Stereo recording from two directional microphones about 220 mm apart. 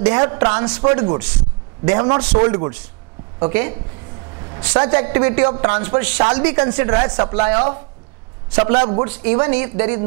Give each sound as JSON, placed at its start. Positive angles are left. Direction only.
{"t": 0.0, "sound": "a woman's voice", "side_deg": -20}